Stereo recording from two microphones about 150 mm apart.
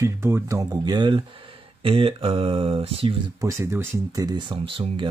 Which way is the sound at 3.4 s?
20° right (ahead or behind).